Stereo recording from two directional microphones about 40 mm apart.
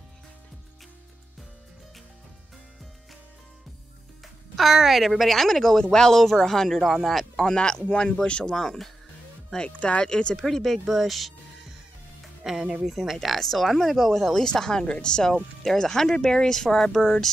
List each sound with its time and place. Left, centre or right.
4.2 s speech: centre
7.3 s speech: centre
8.5 s speech: centre
9.7 s speech: left
10.4 s speech: centre
12.4 s speech: centre
14.3 s speech: centre
15.8 s speech: centre